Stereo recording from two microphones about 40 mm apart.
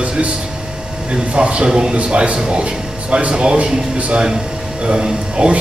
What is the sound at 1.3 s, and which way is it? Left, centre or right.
A man's voice, right.